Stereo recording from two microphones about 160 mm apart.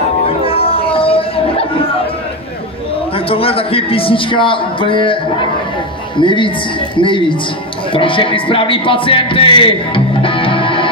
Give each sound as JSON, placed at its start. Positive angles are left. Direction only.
{"t": 0.5, "sound": "a sound", "side_deg": 35}
{"t": 3.3, "sound": "a man's voice", "side_deg": 35}
{"t": 7.9, "sound": "music", "side_deg": 35}